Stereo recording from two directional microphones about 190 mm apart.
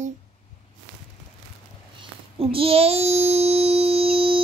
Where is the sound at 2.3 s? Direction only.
30° right (ahead or behind).